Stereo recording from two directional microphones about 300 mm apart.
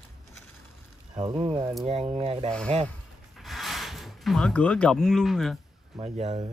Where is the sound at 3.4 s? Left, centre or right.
Centre.